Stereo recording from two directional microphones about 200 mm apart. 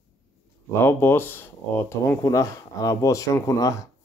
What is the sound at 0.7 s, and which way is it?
Speech, 10° left (ahead or behind).